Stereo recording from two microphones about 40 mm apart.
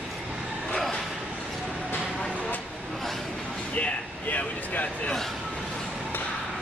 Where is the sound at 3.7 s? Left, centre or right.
Left.